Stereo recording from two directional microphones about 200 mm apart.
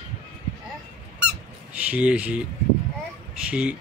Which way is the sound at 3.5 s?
5° right (ahead or behind).